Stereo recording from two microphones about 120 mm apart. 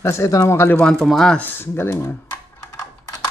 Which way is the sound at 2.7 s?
30° left (ahead or behind).